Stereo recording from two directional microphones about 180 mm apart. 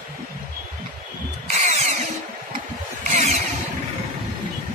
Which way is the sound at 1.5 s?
40° right (ahead or behind).